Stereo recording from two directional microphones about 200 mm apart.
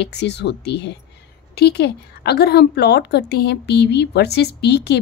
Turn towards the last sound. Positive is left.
turn(degrees=55)  # may be behind; listen again after turning